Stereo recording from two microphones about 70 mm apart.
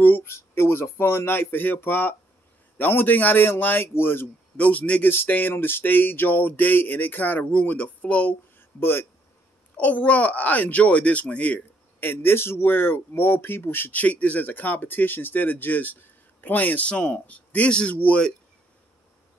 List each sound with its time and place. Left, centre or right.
0.0 s speech: left; by 8.4 s centre
8.5 s a sound: left
9.8 s speech: centre